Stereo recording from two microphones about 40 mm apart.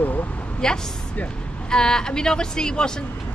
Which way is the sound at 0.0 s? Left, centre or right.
Left.